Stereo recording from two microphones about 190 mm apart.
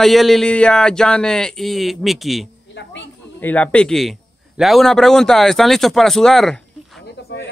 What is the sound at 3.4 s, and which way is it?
A man's voice, 10° left (ahead or behind).